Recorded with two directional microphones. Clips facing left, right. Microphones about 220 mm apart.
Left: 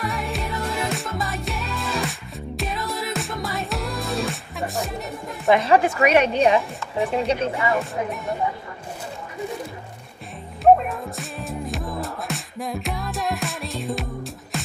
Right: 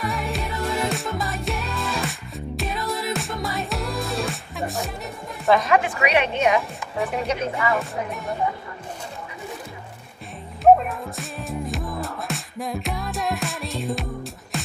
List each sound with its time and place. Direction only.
0.0 s music: centre (ahead or behind)
5.6 s a woman's voice: 35° left (ahead or behind)
7.8 s speech: centre (ahead or behind)
10.6 s music: centre (ahead or behind)